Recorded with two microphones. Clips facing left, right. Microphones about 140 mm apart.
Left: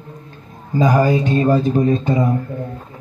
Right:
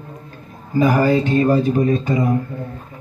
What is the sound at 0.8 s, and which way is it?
Speech, 20° left (ahead or behind).